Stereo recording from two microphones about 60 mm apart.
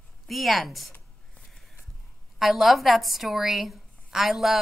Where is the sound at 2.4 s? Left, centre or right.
Centre.